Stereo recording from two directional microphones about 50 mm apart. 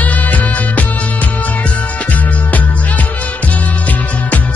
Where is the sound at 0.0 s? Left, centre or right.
Left.